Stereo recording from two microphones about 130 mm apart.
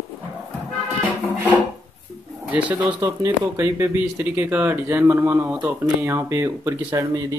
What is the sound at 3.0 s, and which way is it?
Speech, 25° right (ahead or behind).